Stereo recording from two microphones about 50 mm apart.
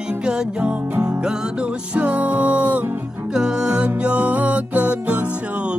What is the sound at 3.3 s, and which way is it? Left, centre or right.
Music, centre.